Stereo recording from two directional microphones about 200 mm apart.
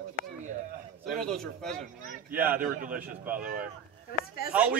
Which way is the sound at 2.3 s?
10° right (ahead or behind).